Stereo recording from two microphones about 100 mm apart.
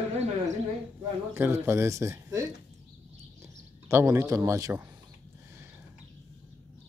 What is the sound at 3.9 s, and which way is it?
Speech, 25° right (ahead or behind).